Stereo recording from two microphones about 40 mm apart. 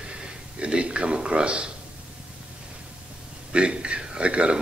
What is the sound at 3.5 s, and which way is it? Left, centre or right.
A man's voice, right.